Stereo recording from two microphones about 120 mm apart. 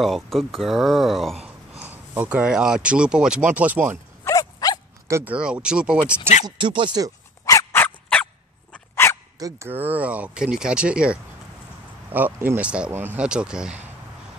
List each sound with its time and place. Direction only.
0.0 s speech: centre (ahead or behind)
1.8 s speech: 15° right (ahead or behind)
4.2 s dog: 30° left (ahead or behind)
5.0 s a sound: 25° right (ahead or behind)
5.3 s speech: 10° right (ahead or behind)
6.4 s speech: 45° right (ahead or behind)
7.7 s fowl: 15° left (ahead or behind)
8.9 s dog: 20° left (ahead or behind)
9.4 s speech: 20° right (ahead or behind)